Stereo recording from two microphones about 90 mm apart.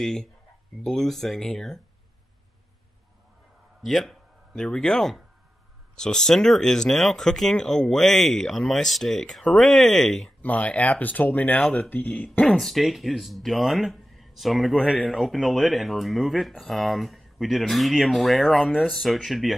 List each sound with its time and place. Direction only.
0.0 s speech: 5° left (ahead or behind)
3.8 s speech: centre (ahead or behind)
10.4 s speech: 15° left (ahead or behind)
12.5 s speech: centre (ahead or behind)